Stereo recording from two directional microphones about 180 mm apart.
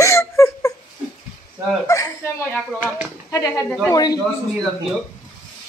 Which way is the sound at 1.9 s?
15° left (ahead or behind).